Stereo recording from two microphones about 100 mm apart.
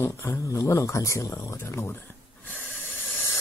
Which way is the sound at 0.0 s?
25° left (ahead or behind).